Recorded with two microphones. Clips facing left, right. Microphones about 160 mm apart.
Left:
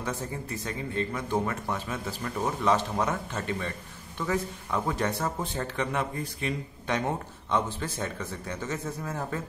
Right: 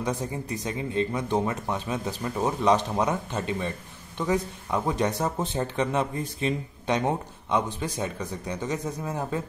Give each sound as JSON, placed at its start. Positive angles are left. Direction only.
{"t": 0.0, "sound": "speech", "side_deg": -15}